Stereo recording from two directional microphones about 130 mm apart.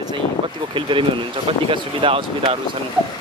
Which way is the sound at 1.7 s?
40° right (ahead or behind).